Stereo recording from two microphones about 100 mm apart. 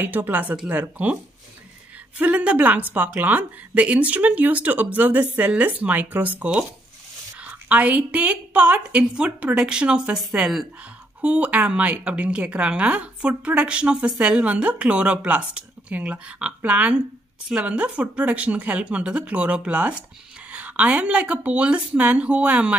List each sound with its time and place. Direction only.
0.0 s a woman's voice: 15° right (ahead or behind)
2.1 s a woman's voice: 15° right (ahead or behind)